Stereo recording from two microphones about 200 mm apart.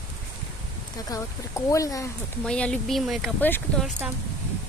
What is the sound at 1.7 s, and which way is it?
Speech, 15° left (ahead or behind).